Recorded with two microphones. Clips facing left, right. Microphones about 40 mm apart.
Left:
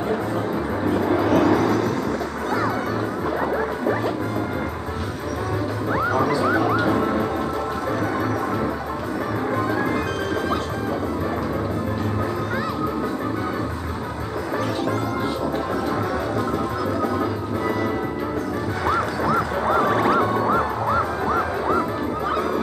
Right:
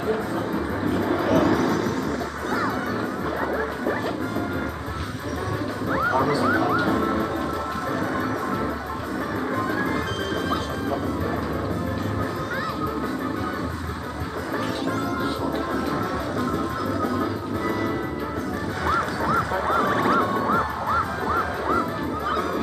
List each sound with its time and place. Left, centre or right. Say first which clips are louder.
0.9 s vehicle: left 2 dB; centre
6.4 s music: left 2 dB; centre
18.9 s music: left 1 dB; centre